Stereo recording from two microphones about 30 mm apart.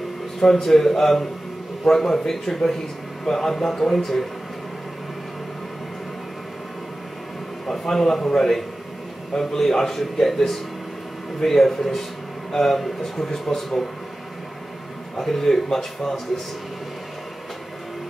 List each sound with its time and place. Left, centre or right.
0.4 s a man's voice: centre
7.6 s a man's voice: centre
15.1 s a man's voice: centre